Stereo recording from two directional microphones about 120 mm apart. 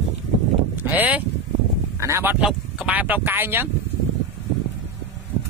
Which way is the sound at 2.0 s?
20° right (ahead or behind).